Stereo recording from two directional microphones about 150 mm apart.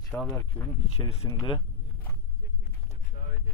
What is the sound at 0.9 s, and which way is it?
Speech, 40° left (ahead or behind).